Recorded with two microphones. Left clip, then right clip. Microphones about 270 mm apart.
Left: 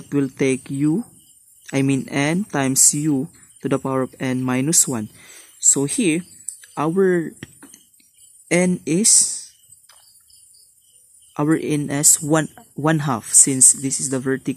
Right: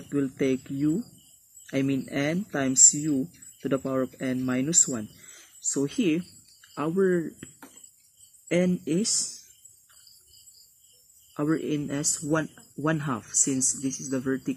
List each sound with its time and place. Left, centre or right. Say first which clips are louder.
0.1 s speech: left 7 dB; left
8.5 s speech: left 7 dB; left
11.3 s speech: left 8 dB; left